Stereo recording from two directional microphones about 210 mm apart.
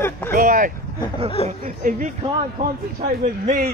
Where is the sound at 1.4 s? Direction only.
30° left (ahead or behind).